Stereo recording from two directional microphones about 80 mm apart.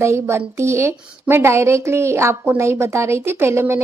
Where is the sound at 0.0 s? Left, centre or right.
Right.